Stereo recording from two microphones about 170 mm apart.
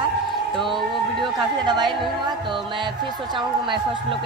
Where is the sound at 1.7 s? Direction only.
25° right (ahead or behind).